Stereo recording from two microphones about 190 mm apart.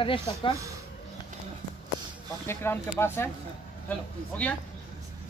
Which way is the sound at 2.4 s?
10° left (ahead or behind).